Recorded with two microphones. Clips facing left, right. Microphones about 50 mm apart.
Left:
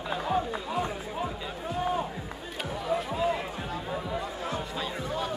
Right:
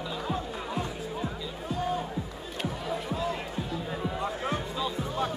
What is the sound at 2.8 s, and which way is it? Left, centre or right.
Music, centre.